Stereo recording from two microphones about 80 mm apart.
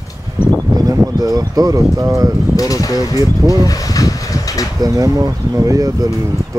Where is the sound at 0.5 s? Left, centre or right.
Right.